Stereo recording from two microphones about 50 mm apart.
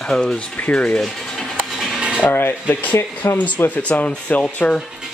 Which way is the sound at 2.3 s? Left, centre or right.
Left.